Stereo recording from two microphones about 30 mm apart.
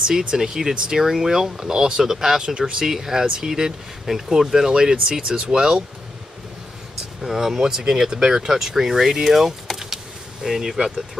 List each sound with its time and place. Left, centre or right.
0.0 s speech: right
7.2 s speech: centre
9.7 s vehicle: centre
10.4 s speech: centre